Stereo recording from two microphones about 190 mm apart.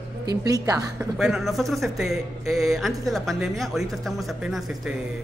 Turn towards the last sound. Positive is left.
turn(degrees=0)  # may be behind; listen again after turning